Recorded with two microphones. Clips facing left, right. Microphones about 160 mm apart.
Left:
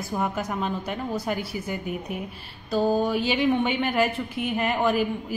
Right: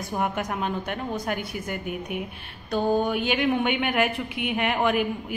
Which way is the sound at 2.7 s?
Centre (ahead or behind).